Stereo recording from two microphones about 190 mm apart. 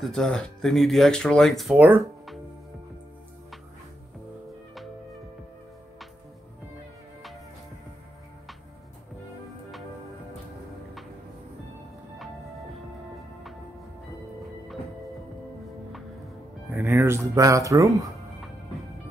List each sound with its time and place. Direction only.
0.0 s speech: centre (ahead or behind)
16.7 s music: 10° right (ahead or behind)
17.4 s speech: 15° right (ahead or behind)